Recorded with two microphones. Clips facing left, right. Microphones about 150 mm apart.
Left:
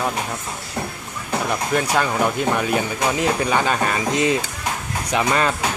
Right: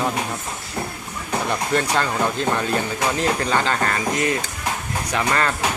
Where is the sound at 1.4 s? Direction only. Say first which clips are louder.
Even; 10° left (ahead or behind).